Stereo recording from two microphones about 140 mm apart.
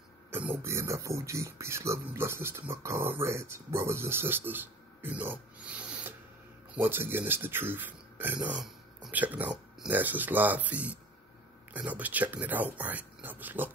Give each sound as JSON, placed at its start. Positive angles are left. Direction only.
{"t": 0.3, "sound": "speech", "side_deg": -15}